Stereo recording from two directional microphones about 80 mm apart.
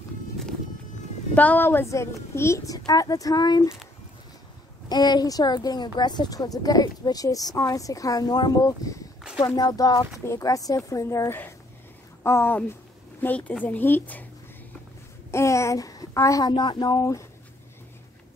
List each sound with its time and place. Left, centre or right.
1.3 s a woman's voice: centre; by 3.6 s left
4.8 s speech: left
8.6 s a woman's voice: left
9.6 s a woman's voice: left
13.2 s a woman's voice: centre
15.3 s a child's voice: left
16.5 s speech: left
17.0 s a woman's voice: left